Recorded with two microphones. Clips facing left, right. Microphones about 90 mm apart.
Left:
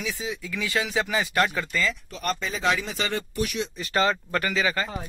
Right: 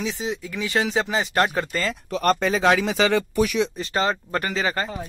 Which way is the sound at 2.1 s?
70° right (ahead or behind).